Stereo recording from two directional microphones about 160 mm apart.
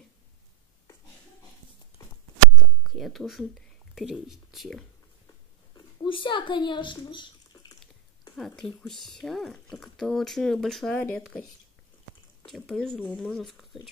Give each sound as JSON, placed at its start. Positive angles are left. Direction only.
{"t": 2.5, "sound": "a sound", "side_deg": 0}
{"t": 3.9, "sound": "speech", "side_deg": 0}
{"t": 5.8, "sound": "speech", "side_deg": 30}
{"t": 8.4, "sound": "speech", "side_deg": 0}
{"t": 12.4, "sound": "speech", "side_deg": 0}